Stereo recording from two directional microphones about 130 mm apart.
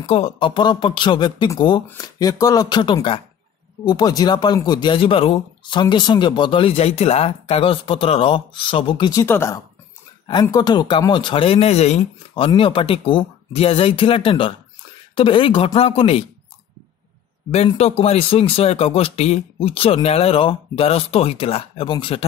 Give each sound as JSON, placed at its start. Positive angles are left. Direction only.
{"t": 0.0, "sound": "speech", "side_deg": 50}
{"t": 9.1, "sound": "speech", "side_deg": 20}
{"t": 10.5, "sound": "speech", "side_deg": 35}
{"t": 12.4, "sound": "speech", "side_deg": 40}
{"t": 17.7, "sound": "speech", "side_deg": 50}